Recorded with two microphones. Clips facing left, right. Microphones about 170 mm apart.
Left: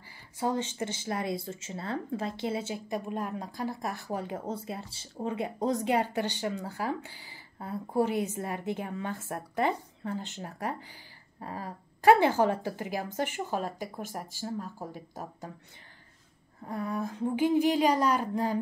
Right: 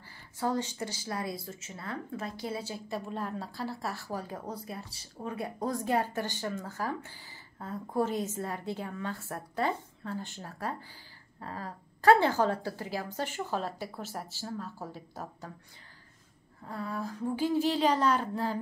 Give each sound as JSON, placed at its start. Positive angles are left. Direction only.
{"t": 0.4, "sound": "a woman's voice", "side_deg": 20}
{"t": 16.6, "sound": "a woman's voice", "side_deg": 20}